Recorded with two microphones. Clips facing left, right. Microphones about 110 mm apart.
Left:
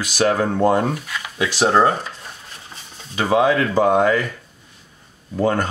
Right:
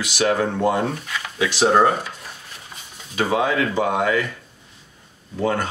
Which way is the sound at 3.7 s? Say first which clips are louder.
Left 5 dB; 40° left (ahead or behind).